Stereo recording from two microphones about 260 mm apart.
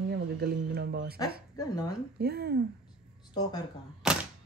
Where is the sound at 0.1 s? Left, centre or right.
Right.